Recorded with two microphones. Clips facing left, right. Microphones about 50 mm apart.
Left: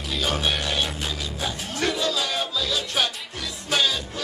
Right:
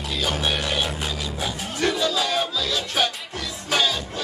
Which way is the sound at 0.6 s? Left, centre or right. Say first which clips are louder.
Right 1 dB; centre.